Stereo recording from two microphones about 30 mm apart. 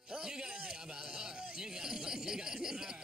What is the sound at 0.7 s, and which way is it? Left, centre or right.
Speech, right.